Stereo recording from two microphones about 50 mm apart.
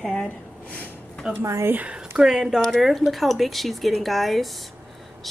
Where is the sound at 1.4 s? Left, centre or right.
Right.